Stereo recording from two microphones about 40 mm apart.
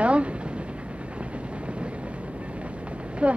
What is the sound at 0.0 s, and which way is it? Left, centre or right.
Vehicle, right.